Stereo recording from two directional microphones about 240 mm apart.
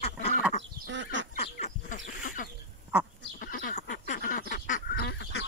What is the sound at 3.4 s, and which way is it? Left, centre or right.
Duck, left.